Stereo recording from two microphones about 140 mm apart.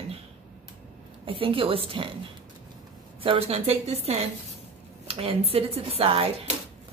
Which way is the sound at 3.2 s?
40° right (ahead or behind).